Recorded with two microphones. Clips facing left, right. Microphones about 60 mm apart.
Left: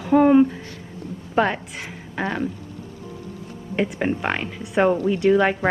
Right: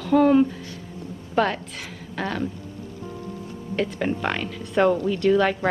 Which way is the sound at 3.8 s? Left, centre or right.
Left.